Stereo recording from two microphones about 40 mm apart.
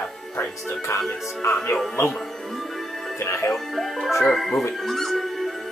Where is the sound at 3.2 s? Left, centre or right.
Left.